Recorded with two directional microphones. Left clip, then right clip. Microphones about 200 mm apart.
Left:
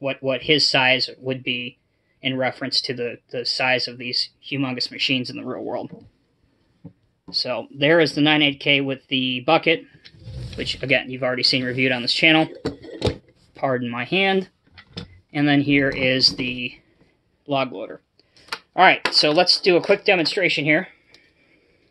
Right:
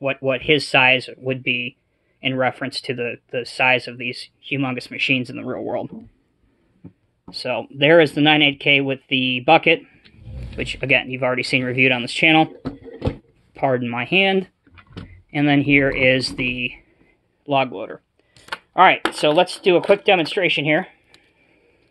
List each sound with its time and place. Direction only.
0.0 s speech: 25° right (ahead or behind)
7.3 s speech: 25° right (ahead or behind)
13.5 s speech: 25° right (ahead or behind)